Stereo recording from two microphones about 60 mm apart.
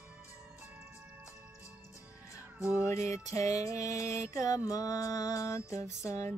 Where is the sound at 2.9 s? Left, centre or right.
Left.